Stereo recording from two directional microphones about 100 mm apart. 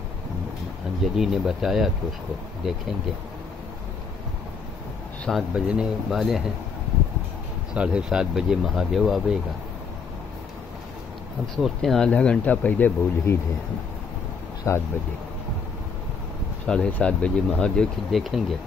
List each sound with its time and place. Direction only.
1.1 s speech: 5° right (ahead or behind)
5.5 s speech: 10° right (ahead or behind)
7.7 s speech: 10° right (ahead or behind)
11.5 s speech: 5° left (ahead or behind)
12.1 s speech: 15° left (ahead or behind)
14.7 s speech: 35° left (ahead or behind)
16.6 s speech: 10° left (ahead or behind)